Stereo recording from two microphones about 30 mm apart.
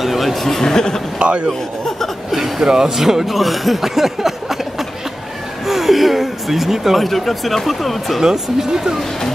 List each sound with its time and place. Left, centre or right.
0.0 s speech: centre
1.2 s speech: right
1.5 s speech: centre
2.6 s speech: centre
8.2 s speech: centre